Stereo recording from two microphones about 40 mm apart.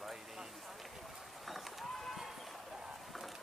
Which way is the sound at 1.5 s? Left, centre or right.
Centre.